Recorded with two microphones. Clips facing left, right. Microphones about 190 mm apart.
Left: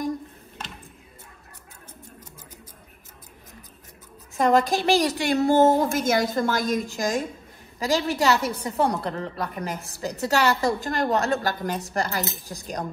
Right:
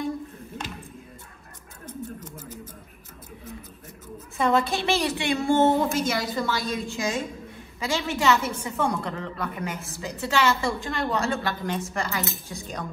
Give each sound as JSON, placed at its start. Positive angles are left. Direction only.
{"t": 4.4, "sound": "a woman's voice", "side_deg": 40}